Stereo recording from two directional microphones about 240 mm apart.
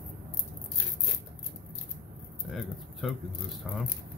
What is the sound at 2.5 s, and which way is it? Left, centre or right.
Speech, centre.